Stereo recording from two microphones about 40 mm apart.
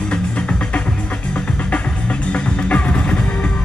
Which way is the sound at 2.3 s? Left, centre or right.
Left.